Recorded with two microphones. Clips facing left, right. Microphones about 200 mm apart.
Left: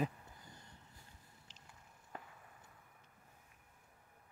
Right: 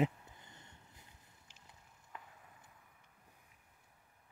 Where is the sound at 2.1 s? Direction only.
40° left (ahead or behind).